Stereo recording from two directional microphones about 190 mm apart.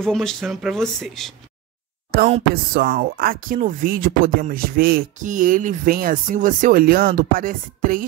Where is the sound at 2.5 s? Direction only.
55° right (ahead or behind).